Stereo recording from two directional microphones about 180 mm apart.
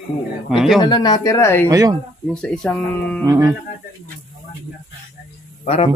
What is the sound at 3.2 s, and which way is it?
Speech, 20° right (ahead or behind).